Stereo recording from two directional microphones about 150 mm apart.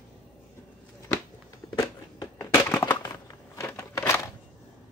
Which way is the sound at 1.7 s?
25° left (ahead or behind).